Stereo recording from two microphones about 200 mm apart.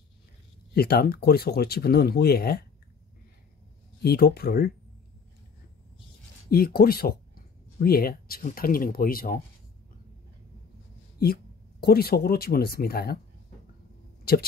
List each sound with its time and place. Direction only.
0.7 s speech: 50° left (ahead or behind)
4.0 s speech: 50° left (ahead or behind)
6.5 s speech: 50° left (ahead or behind)
11.8 s speech: 50° left (ahead or behind)
14.3 s speech: 50° left (ahead or behind)